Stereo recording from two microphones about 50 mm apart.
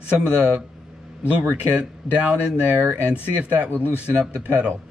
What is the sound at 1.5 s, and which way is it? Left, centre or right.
Speech, right.